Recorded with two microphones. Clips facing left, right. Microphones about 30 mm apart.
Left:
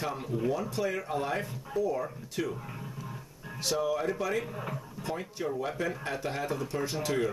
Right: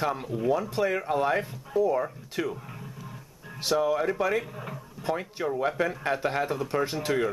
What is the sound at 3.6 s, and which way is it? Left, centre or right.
Speech, centre.